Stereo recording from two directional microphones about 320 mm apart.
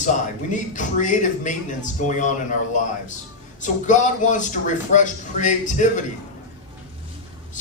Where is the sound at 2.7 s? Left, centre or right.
Left.